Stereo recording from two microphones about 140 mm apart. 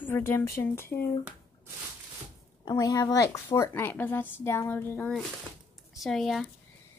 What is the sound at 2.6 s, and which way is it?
A woman's voice, 25° left (ahead or behind).